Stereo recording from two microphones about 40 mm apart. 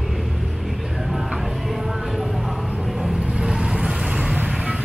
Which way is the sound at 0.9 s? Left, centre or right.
Centre.